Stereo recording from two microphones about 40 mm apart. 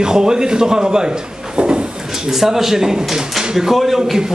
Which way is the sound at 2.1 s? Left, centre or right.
Centre.